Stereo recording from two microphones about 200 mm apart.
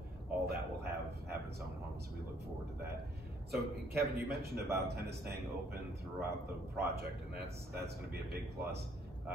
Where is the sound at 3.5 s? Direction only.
50° right (ahead or behind).